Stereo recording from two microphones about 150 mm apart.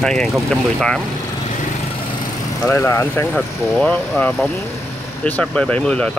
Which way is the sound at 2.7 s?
15° left (ahead or behind).